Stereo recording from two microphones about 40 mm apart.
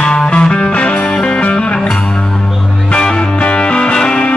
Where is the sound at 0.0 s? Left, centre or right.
Left.